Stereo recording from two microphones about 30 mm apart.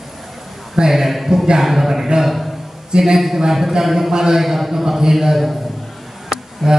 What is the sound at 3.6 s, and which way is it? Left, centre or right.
Speech, centre.